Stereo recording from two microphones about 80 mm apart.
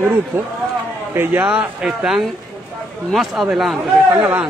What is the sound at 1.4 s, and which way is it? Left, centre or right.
Speech, centre.